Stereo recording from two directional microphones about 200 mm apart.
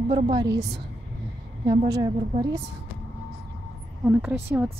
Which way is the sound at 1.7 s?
20° right (ahead or behind).